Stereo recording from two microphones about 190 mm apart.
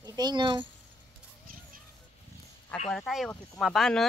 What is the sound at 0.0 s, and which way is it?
Speech, 20° right (ahead or behind).